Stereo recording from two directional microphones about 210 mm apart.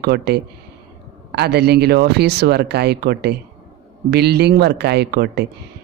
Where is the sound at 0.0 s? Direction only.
50° right (ahead or behind).